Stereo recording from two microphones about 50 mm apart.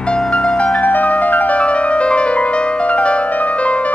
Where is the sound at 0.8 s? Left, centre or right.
Left.